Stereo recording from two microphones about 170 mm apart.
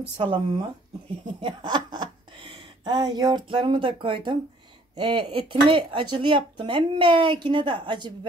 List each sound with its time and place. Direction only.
0.2 s speech: 30° right (ahead or behind)